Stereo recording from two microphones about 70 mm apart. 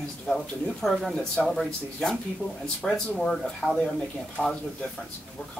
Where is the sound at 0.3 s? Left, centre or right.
Centre.